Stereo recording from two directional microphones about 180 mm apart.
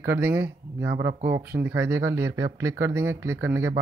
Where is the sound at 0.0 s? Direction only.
15° right (ahead or behind).